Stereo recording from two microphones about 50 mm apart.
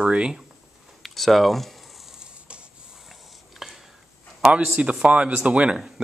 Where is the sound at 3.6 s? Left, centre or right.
Centre.